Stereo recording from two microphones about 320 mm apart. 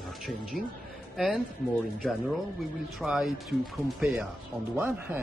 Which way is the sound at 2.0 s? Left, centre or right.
Centre.